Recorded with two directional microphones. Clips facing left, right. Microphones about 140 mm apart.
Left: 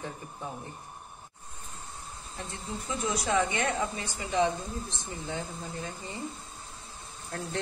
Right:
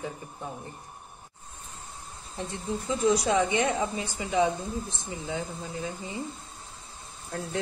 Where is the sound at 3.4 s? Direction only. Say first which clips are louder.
Right 3 dB; 20° right (ahead or behind); by 6.1 s 5° right (ahead or behind).